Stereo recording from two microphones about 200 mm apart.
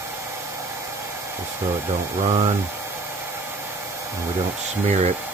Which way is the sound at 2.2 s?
35° right (ahead or behind).